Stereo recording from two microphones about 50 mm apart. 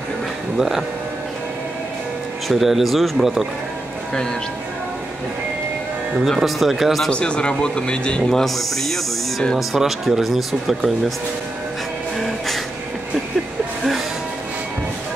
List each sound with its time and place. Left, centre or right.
0.6 s speech: centre
2.4 s speech: centre
6.2 s speech: centre
7.1 s speech: left
8.2 s speech: centre
12.2 s music: centre